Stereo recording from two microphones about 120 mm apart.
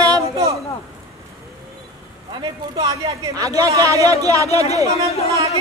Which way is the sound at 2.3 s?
45° right (ahead or behind).